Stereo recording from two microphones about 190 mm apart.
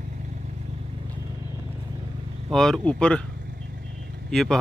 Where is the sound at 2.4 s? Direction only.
Centre (ahead or behind).